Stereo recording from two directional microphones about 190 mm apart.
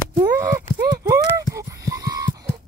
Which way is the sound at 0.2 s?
20° right (ahead or behind).